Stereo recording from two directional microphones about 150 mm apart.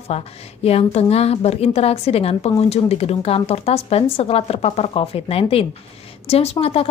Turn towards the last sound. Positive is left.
turn(degrees=40)  # may be behind; listen again after turning